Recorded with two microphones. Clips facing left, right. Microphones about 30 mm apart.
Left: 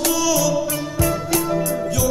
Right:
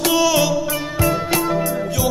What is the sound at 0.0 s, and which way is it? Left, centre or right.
Music, right.